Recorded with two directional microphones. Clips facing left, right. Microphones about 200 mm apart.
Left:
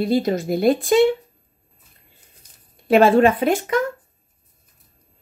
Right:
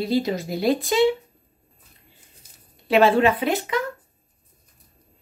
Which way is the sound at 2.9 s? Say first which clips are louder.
Left 3 dB; 45° left (ahead or behind).